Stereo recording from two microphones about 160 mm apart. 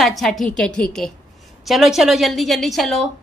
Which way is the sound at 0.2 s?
Centre (ahead or behind).